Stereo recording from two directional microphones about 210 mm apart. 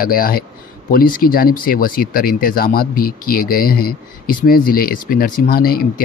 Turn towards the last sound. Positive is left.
turn(degrees=45)  # may be behind; listen again after turning